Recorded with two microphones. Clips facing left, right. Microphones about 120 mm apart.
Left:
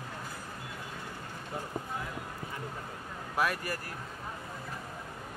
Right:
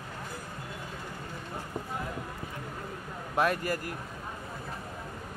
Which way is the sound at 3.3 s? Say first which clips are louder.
Right 4 dB; 25° right (ahead or behind).